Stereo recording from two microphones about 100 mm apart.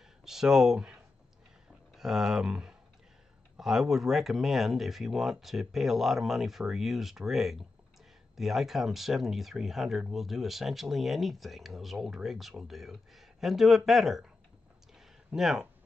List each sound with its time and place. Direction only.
0.2 s speech: 5° right (ahead or behind)
2.0 s speech: 5° right (ahead or behind)
15.3 s speech: 5° right (ahead or behind)